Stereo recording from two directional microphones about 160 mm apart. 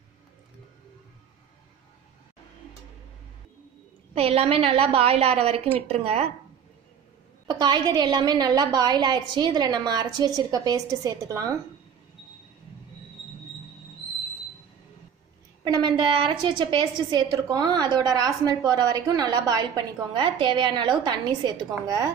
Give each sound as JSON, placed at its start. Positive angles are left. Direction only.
{"t": 4.1, "sound": "a woman's voice", "side_deg": -40}
{"t": 7.4, "sound": "a woman's voice", "side_deg": -25}
{"t": 15.6, "sound": "a woman's voice", "side_deg": -25}